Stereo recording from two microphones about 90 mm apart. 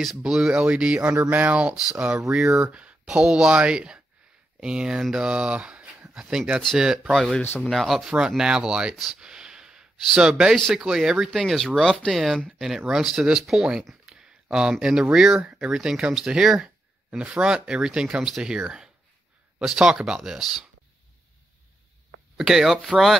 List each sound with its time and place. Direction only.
0.2 s speech: 5° right (ahead or behind)
7.4 s speech: 25° left (ahead or behind)
7.7 s speech: centre (ahead or behind)
22.4 s speech: 5° right (ahead or behind)